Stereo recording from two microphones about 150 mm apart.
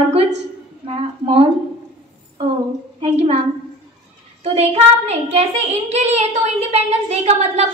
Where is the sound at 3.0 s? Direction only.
45° right (ahead or behind).